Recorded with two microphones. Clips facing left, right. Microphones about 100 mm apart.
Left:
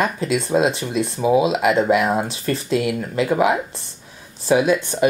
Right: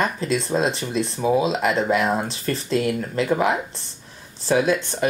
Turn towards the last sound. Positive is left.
turn(degrees=5)  # may be behind; listen again after turning